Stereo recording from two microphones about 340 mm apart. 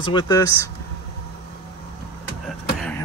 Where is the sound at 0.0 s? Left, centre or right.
Centre.